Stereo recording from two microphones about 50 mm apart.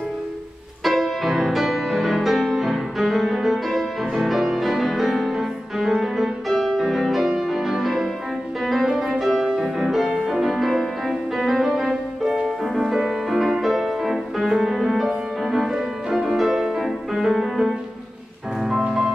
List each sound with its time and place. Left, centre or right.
0.8 s music: centre